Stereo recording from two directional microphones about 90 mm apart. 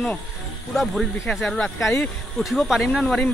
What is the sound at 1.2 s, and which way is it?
Speech, 5° left (ahead or behind).